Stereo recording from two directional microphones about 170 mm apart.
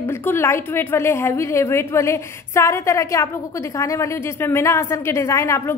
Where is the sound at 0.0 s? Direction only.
15° left (ahead or behind).